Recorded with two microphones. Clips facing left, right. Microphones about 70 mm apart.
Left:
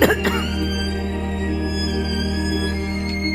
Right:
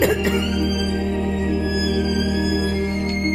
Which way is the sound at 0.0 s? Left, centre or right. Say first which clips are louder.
Left 2 dB; left.